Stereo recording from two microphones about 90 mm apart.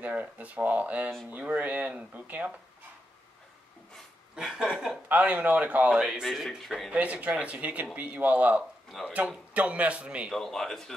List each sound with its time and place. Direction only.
0.0 s a man's voice: 15° right (ahead or behind)
3.9 s speech: 5° right (ahead or behind)
5.0 s a man's voice: 20° right (ahead or behind); by 6.9 s centre (ahead or behind)
6.9 s a man's voice: 15° right (ahead or behind)
8.9 s speech: centre (ahead or behind)
9.5 s a man's voice: 15° right (ahead or behind)
10.3 s speech: 5° left (ahead or behind)